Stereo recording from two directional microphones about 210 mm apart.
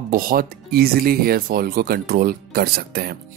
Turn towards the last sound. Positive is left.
turn(degrees=-50)  # may be behind; listen again after turning